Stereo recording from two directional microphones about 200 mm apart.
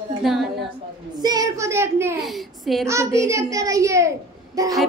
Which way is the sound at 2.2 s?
Centre (ahead or behind).